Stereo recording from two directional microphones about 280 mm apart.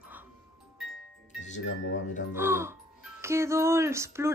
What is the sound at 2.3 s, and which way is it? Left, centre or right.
Speech, centre.